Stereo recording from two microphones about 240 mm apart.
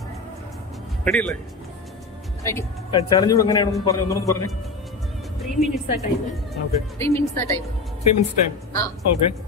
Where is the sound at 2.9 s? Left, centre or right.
Centre.